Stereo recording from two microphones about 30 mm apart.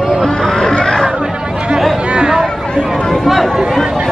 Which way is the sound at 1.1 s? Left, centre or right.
Right.